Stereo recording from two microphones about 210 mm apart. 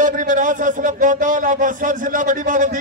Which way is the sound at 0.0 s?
40° right (ahead or behind).